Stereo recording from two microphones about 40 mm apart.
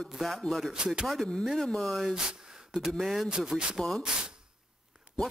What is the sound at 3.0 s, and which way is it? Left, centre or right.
Speech, centre.